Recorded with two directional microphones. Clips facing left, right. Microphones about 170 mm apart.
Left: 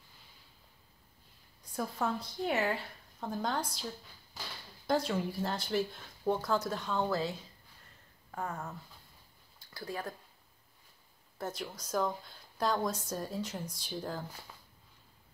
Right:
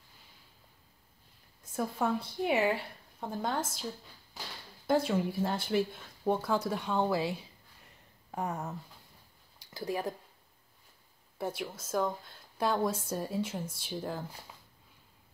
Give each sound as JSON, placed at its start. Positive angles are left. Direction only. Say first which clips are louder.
{"t": 1.6, "sound": "speech", "louder": "right 3 dB", "side_deg": -5}
{"t": 11.3, "sound": "speech", "louder": "right 3 dB", "side_deg": -10}